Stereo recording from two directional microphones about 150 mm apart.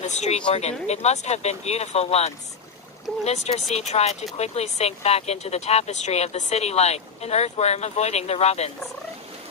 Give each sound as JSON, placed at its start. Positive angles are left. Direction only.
{"t": 0.0, "sound": "speech", "side_deg": 50}